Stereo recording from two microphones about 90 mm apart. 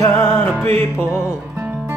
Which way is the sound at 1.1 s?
20° right (ahead or behind).